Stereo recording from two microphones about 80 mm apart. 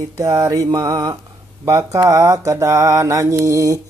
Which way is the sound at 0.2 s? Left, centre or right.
Right.